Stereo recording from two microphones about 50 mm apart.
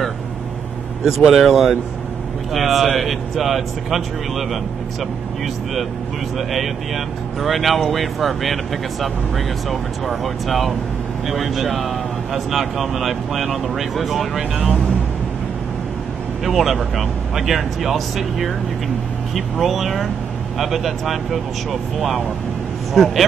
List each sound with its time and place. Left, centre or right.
1.0 s speech: centre
6.3 s speech: centre
9.7 s speech: centre
16.4 s speech: centre
19.6 s speech: centre
22.9 s speech: centre